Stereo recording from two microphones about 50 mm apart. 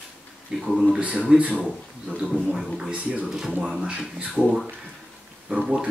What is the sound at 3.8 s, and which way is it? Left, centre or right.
Speech, right.